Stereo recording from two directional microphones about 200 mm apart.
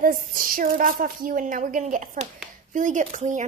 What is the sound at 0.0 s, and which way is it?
Speech, 45° right (ahead or behind).